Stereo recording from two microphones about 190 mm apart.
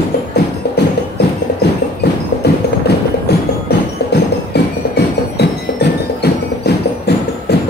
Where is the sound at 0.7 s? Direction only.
60° left (ahead or behind).